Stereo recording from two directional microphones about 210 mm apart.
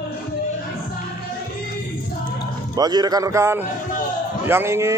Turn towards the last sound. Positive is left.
turn(degrees=-15)  # may be behind; listen again after turning